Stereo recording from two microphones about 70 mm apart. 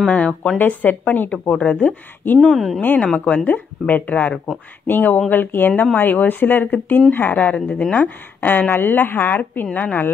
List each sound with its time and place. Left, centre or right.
0.0 s a woman's voice: centre
2.4 s speech: centre
2.8 s a woman's voice: left; by 8.0 s centre
8.0 s a woman's voice: left